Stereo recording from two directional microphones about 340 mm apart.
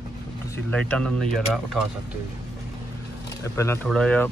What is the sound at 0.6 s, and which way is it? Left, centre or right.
Speech, centre.